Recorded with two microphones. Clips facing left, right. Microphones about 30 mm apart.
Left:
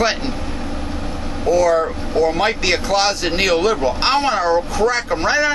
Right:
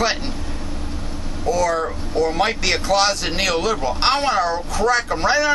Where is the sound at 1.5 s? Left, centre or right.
Centre.